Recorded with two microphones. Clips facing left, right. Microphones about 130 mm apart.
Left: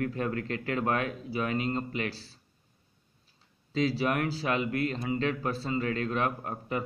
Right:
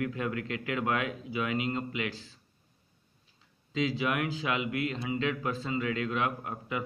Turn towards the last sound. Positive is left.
turn(degrees=40)  # may be behind; listen again after turning